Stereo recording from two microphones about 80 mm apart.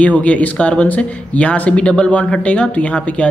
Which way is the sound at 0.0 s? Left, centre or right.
Centre.